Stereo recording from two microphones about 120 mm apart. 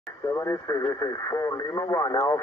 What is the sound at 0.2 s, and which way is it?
Speech, 25° left (ahead or behind).